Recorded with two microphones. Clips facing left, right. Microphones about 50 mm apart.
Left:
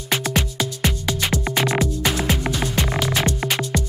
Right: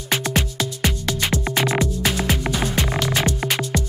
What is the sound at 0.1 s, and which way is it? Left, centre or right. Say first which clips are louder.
Music: even; centre.